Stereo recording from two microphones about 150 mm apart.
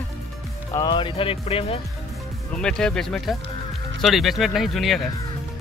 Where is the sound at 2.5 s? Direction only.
5° left (ahead or behind).